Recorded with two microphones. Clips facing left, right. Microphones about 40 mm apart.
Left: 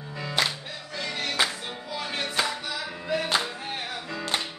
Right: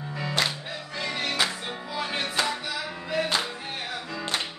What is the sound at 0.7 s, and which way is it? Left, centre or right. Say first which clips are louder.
Music: right 2 dB; centre.